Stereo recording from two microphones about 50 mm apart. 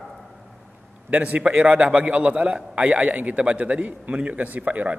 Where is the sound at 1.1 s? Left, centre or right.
Right.